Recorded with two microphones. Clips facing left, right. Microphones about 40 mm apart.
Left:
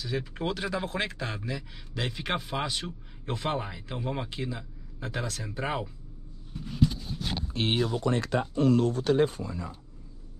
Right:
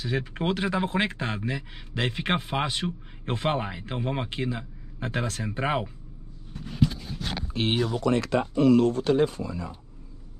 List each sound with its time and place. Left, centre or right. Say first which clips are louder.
0.0 s speech: right 3 dB; right
6.9 s speech: right 1 dB; centre
8.1 s speech: right 4 dB; right
9.4 s speech: right 3 dB; right